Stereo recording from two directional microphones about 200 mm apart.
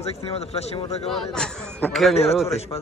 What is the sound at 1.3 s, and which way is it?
Speech, 5° left (ahead or behind).